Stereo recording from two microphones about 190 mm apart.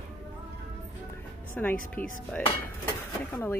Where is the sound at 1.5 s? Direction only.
10° left (ahead or behind).